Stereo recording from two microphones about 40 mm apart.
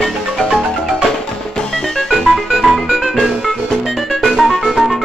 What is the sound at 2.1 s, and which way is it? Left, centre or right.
Music, centre.